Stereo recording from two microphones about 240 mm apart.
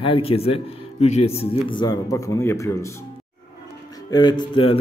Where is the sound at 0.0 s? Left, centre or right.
Left.